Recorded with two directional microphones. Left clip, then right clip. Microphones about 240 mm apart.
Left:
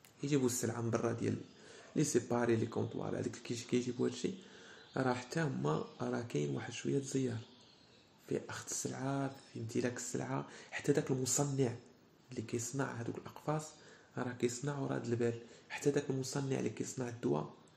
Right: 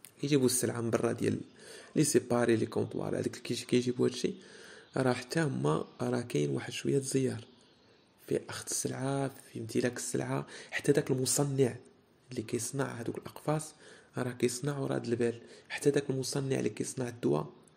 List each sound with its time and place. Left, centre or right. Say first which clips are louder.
0.2 s a man's voice: right 6 dB; right